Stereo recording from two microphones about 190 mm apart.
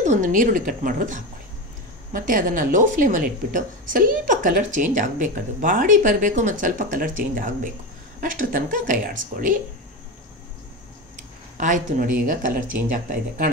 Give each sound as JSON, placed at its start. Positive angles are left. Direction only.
{"t": 0.0, "sound": "speech", "side_deg": -40}
{"t": 11.5, "sound": "a woman's voice", "side_deg": -40}